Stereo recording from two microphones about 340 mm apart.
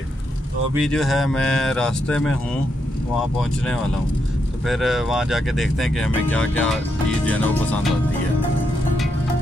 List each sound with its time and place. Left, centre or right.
0.7 s speech: centre
3.3 s speech: centre